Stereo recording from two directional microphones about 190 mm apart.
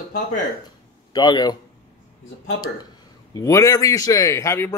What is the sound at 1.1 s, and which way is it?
Speech, 20° left (ahead or behind).